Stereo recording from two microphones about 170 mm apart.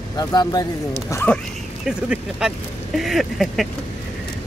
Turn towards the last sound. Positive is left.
turn(degrees=0)  # may be behind; listen again after turning